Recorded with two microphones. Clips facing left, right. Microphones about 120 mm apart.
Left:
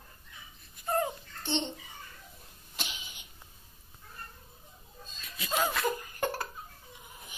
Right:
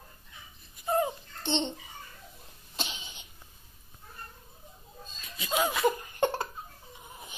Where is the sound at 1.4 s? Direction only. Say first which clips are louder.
Right 3 dB; 25° right (ahead or behind).